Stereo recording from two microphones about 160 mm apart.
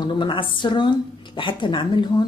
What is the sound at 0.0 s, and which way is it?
A woman's voice, 30° left (ahead or behind).